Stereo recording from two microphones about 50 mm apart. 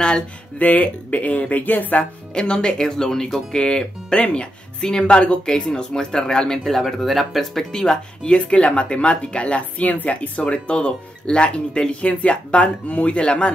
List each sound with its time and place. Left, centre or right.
0.6 s speech: left
2.3 s speech: centre
7.7 s speech: centre